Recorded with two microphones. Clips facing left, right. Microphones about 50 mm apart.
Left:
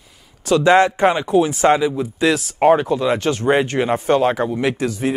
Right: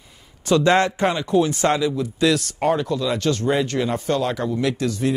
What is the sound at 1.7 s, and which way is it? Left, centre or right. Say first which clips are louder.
Speech: left 5 dB; left.